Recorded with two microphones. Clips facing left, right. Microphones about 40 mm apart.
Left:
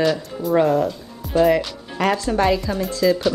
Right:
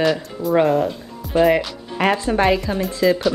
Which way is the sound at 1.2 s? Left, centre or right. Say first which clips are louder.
Even; centre.